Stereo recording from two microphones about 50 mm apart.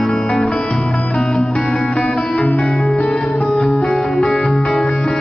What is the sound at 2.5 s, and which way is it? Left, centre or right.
Music, centre.